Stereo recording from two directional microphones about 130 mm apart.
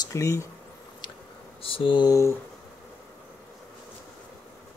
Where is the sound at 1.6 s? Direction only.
45° left (ahead or behind).